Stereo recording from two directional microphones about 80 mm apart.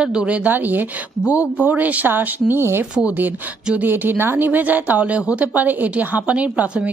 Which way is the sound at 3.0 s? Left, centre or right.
Centre.